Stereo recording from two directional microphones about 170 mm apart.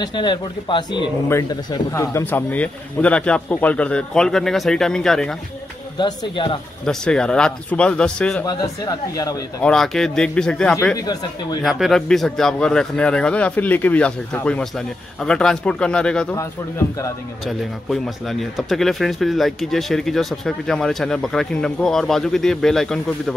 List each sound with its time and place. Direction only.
0.0 s speech: 25° left (ahead or behind); by 5.3 s 5° left (ahead or behind)
5.9 s speech: 25° left (ahead or behind)
6.9 s speech: 5° left (ahead or behind)
8.5 s speech: 25° left (ahead or behind)
9.6 s speech: 5° left (ahead or behind)
17.5 s speech: centre (ahead or behind)